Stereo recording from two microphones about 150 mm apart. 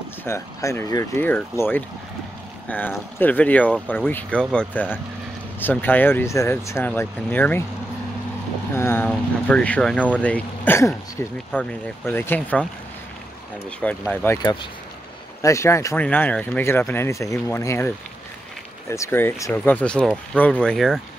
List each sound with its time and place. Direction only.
0.2 s speech: 20° left (ahead or behind)
3.2 s speech: 10° left (ahead or behind)
8.7 s speech: 15° left (ahead or behind)
13.7 s speech: 10° left (ahead or behind)
15.4 s speech: 20° left (ahead or behind); by 21.0 s centre (ahead or behind)